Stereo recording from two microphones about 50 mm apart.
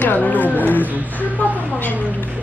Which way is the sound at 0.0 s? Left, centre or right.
Left.